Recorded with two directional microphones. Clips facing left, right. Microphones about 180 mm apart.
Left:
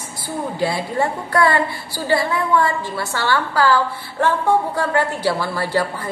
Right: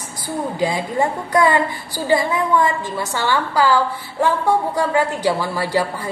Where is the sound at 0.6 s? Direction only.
15° right (ahead or behind).